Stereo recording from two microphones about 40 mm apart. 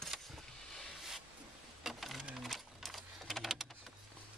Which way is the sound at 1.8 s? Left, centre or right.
Centre.